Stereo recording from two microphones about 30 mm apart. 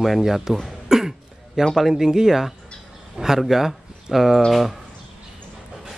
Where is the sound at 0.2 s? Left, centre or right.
Centre.